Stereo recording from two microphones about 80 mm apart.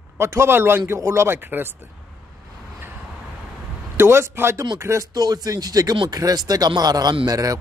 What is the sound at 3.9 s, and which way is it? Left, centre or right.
A man's voice, right.